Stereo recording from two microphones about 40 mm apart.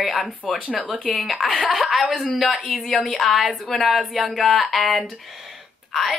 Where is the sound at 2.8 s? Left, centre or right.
Centre.